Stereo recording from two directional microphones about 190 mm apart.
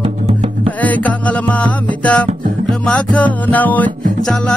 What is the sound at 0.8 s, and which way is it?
Music, 10° left (ahead or behind).